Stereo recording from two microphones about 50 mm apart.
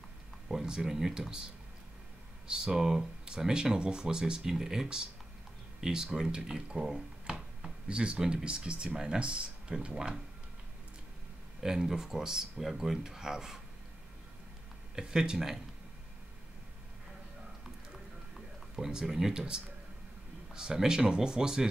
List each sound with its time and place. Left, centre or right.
0.5 s speech: centre
11.6 s speech: centre
15.0 s speech: centre
18.8 s speech: centre